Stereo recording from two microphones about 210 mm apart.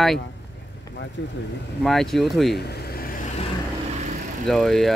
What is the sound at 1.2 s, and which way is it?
Speech, 55° left (ahead or behind).